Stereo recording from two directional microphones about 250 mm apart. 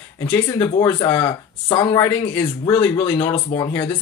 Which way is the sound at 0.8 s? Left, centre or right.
Centre.